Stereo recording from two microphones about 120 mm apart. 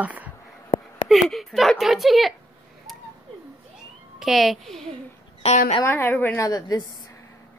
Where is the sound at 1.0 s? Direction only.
Centre (ahead or behind).